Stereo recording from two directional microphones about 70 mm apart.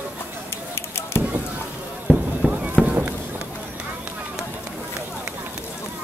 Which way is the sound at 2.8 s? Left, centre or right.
Right.